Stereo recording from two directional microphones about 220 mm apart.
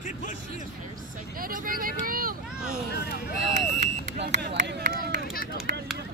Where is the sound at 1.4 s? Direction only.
40° right (ahead or behind).